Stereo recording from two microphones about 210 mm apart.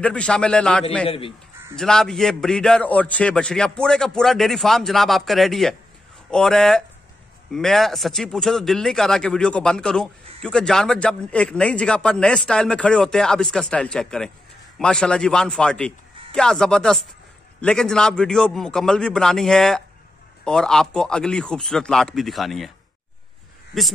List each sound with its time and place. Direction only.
0.0 s a man's voice: 5° left (ahead or behind)
1.0 s a man's voice: 25° left (ahead or behind)
1.8 s a man's voice: 5° left (ahead or behind)